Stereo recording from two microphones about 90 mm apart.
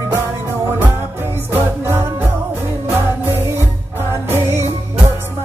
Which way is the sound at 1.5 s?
25° right (ahead or behind).